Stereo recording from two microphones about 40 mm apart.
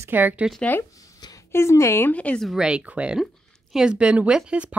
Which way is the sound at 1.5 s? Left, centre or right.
Left.